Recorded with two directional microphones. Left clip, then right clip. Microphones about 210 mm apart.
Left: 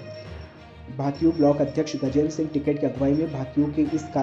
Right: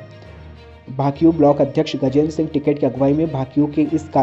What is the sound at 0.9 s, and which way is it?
Speech, 30° right (ahead or behind).